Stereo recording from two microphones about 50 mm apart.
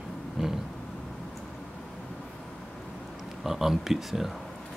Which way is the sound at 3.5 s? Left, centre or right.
Centre.